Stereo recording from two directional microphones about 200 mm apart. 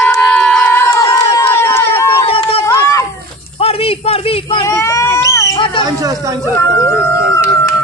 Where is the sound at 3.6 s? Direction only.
30° left (ahead or behind).